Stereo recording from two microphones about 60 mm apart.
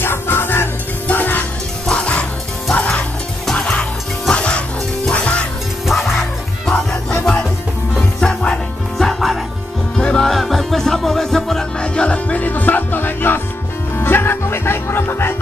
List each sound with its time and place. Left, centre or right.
0.0 s music: left
3.5 s music: centre
5.9 s music: centre; by 15.3 s left